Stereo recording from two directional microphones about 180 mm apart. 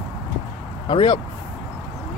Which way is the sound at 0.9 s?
25° left (ahead or behind).